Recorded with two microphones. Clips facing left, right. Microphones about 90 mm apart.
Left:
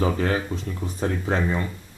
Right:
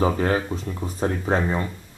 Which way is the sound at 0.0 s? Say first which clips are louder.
Right 2 dB; 35° right (ahead or behind).